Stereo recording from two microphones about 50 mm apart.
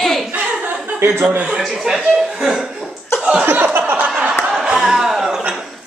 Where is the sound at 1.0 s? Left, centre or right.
Right.